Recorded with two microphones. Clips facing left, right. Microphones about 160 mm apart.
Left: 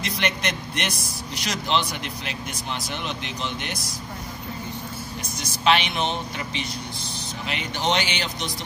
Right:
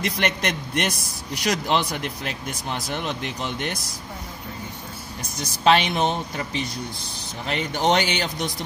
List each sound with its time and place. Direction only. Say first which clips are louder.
0.0 s speech: right 2 dB; 50° right (ahead or behind)
5.6 s speech: right 3 dB; 45° right (ahead or behind)